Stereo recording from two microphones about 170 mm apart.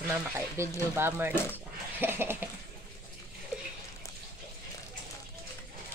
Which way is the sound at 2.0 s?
15° right (ahead or behind).